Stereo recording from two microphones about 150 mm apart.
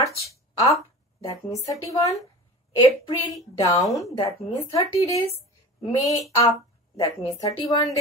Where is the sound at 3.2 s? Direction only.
20° left (ahead or behind).